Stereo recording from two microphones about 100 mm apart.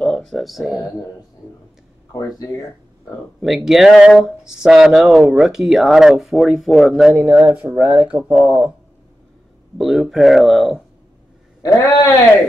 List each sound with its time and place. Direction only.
0.0 s a sound: 5° left (ahead or behind)
3.3 s speech: centre (ahead or behind)
9.8 s speech: 5° right (ahead or behind)
11.6 s a man's voice: 35° left (ahead or behind)